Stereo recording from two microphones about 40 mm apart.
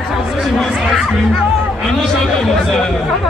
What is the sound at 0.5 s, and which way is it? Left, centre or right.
Speech, centre.